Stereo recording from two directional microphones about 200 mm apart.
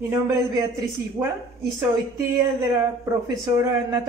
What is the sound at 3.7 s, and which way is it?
Speech, 15° right (ahead or behind).